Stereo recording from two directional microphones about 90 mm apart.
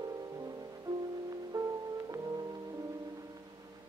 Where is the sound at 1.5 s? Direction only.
35° right (ahead or behind).